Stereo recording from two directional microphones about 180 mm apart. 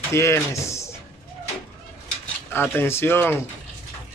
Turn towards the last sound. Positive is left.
turn(degrees=10)  # may be behind; listen again after turning